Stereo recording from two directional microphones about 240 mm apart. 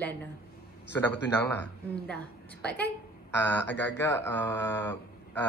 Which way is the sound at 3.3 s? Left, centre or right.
Left.